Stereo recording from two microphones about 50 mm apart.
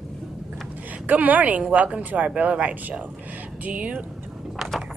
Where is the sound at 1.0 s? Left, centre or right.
Right.